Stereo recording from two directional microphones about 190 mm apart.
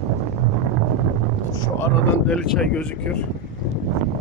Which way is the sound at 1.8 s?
5° left (ahead or behind).